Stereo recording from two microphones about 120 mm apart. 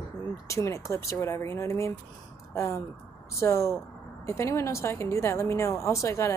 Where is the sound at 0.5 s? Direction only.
25° left (ahead or behind).